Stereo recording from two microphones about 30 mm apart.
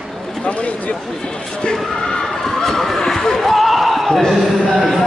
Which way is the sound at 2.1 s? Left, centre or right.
Centre.